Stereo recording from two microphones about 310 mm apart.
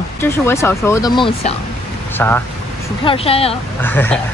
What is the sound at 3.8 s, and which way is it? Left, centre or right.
Speech, centre.